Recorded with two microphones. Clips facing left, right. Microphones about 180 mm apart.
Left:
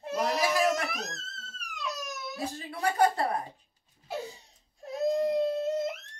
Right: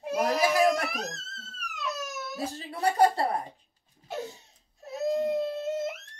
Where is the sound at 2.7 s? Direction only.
35° right (ahead or behind).